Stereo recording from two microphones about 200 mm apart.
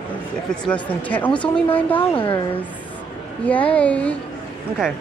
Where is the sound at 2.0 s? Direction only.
25° left (ahead or behind).